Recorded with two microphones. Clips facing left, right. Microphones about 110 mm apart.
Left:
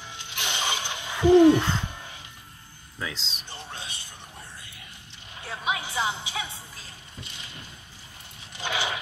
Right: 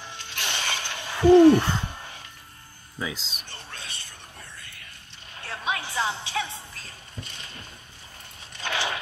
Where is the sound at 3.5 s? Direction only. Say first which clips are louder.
Left 4 dB; 60° right (ahead or behind).